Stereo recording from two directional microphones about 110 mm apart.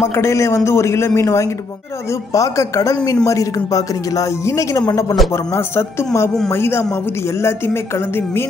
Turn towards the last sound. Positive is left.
turn(degrees=20)  # may be behind; listen again after turning